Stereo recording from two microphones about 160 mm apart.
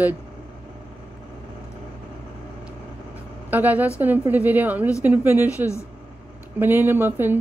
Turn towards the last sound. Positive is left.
turn(degrees=-15)  # may be behind; listen again after turning